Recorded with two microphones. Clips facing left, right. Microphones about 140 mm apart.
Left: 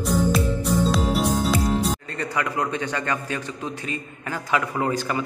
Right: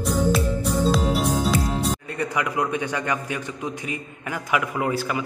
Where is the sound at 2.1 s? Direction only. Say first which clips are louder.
Right 1 dB; 10° right (ahead or behind).